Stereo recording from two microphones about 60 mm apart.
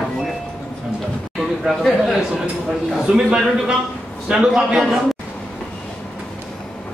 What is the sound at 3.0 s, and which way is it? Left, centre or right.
A man's voice, centre.